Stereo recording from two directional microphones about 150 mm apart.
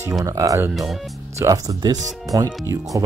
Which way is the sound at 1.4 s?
25° right (ahead or behind).